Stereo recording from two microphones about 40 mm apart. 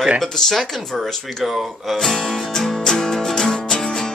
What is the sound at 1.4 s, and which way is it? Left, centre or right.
Speech, centre.